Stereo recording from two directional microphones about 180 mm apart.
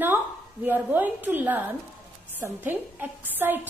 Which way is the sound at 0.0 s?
10° right (ahead or behind).